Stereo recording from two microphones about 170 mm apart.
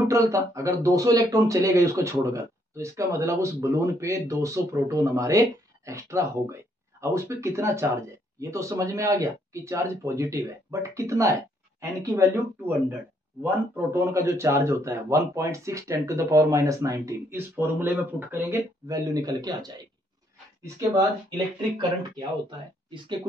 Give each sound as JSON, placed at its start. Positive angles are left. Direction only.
{"t": 0.1, "sound": "speech", "side_deg": -20}